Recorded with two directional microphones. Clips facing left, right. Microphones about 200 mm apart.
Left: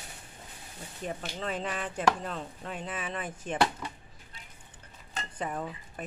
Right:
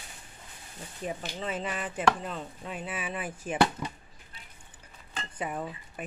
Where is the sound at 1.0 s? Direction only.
Centre (ahead or behind).